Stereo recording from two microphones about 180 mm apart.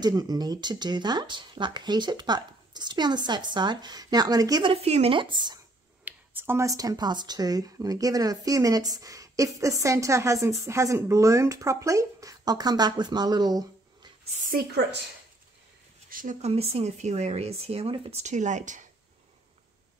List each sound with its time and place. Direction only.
0.0 s speech: 20° right (ahead or behind)
4.8 s speech: 35° right (ahead or behind)
6.0 s speech: 10° right (ahead or behind)
14.3 s a woman's voice: 45° right (ahead or behind)
14.7 s speech: 65° right (ahead or behind)
16.1 s speech: 45° right (ahead or behind)